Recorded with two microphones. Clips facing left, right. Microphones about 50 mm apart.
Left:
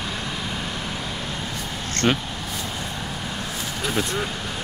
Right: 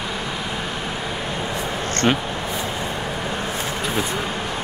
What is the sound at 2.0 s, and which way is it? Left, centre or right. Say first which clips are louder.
Speech: right 2 dB; centre.